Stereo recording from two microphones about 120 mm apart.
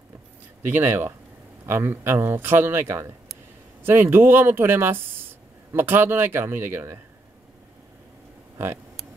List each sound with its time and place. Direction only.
0.6 s speech: 15° right (ahead or behind)